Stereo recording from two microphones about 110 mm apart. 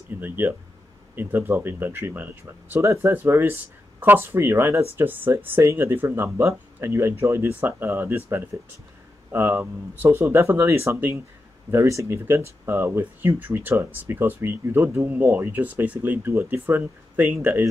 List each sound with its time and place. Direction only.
0.1 s speech: 15° right (ahead or behind)